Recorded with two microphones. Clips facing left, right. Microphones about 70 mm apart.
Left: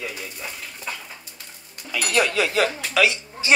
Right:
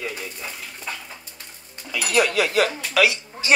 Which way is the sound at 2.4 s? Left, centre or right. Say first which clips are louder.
Right 1 dB; left.